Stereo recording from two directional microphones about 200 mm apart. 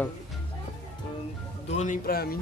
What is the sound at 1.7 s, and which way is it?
Speech, 40° left (ahead or behind).